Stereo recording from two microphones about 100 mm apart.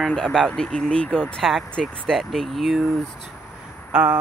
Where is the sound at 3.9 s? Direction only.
15° right (ahead or behind).